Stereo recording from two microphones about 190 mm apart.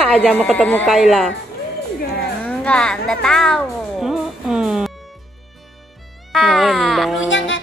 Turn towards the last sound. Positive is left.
turn(degrees=80)